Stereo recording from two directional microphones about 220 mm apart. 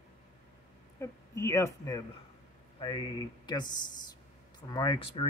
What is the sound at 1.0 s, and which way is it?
Speech, 15° left (ahead or behind).